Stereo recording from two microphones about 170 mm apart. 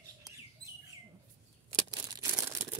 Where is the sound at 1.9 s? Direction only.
15° right (ahead or behind).